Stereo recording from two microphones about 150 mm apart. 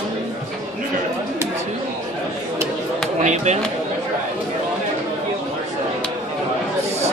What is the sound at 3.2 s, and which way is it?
Chop, 50° right (ahead or behind).